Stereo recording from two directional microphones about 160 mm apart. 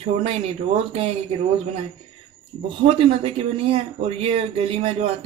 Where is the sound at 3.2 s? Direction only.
40° right (ahead or behind).